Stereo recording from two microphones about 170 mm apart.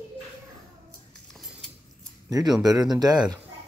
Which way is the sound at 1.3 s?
Centre (ahead or behind).